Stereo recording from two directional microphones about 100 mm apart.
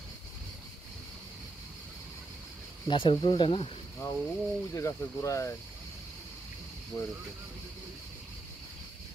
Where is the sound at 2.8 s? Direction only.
55° left (ahead or behind).